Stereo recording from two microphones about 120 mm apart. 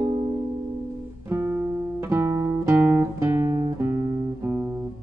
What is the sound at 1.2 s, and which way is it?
Music, 20° right (ahead or behind).